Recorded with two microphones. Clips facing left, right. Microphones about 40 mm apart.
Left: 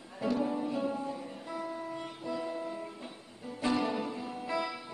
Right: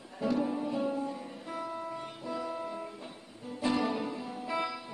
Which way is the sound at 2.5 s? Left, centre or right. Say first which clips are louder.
Even; centre.